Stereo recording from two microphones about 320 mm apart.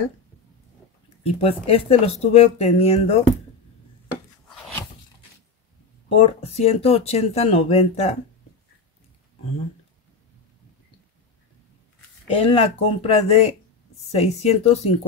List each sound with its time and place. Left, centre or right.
1.2 s speech: centre
4.1 s wood: centre
6.0 s speech: centre
12.3 s speech: centre